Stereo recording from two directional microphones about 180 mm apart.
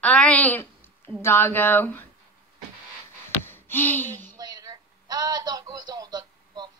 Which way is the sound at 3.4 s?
10° left (ahead or behind).